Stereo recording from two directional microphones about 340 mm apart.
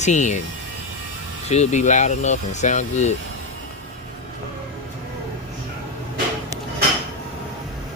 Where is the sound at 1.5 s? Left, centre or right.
Centre.